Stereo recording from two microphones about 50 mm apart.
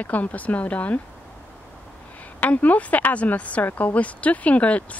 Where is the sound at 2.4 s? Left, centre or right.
Left.